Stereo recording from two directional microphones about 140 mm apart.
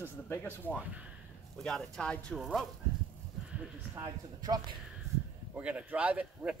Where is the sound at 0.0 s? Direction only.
15° left (ahead or behind).